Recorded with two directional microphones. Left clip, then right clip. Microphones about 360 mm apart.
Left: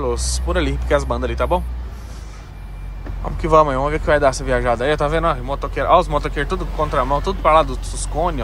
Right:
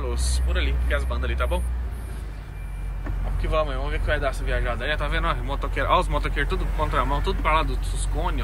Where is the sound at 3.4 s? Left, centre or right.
Left.